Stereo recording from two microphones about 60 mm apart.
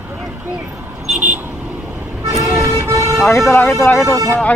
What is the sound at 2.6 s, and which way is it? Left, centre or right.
Vehicle, right.